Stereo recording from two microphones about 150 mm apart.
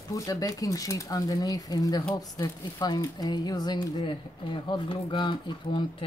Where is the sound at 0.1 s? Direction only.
20° left (ahead or behind).